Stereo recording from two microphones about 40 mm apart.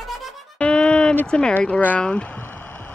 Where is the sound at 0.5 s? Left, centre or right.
Left.